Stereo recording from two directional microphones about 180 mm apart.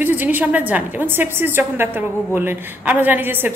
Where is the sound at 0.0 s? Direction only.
10° right (ahead or behind).